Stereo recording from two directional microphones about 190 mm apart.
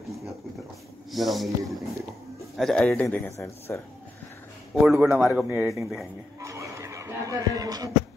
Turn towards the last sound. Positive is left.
turn(degrees=-20)  # may be behind; listen again after turning